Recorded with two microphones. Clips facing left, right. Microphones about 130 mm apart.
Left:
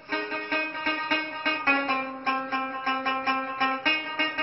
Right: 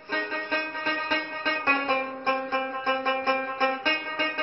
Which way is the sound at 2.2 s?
Centre (ahead or behind).